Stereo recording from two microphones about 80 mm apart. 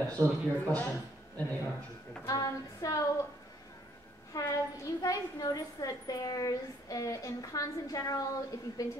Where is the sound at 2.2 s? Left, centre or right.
Left.